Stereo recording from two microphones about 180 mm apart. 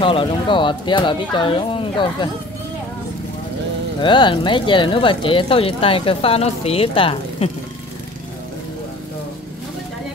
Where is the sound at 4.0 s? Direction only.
25° left (ahead or behind).